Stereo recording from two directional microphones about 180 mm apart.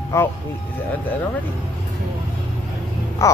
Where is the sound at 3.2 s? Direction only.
15° left (ahead or behind).